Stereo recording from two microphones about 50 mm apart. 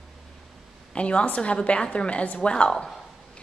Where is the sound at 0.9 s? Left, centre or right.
Left.